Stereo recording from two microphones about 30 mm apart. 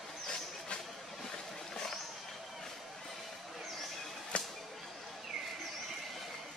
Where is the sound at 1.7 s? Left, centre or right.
Left.